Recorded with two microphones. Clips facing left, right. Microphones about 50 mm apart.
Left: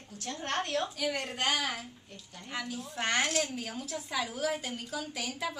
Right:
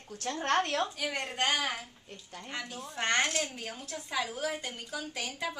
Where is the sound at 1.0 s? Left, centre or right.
Centre.